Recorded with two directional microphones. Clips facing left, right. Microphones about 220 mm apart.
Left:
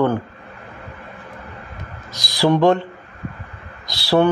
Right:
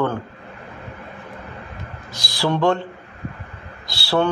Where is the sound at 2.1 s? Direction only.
15° left (ahead or behind).